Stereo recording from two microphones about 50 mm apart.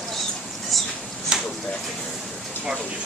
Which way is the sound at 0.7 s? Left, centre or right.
Centre.